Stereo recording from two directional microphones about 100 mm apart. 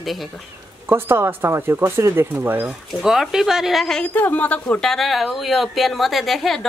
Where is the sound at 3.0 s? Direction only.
5° right (ahead or behind); by 4.6 s 15° left (ahead or behind).